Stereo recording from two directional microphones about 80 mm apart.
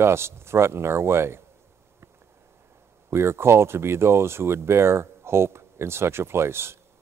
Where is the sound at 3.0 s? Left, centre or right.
Right.